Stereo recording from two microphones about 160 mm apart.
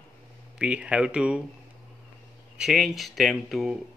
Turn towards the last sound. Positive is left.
turn(degrees=0)  # may be behind; listen again after turning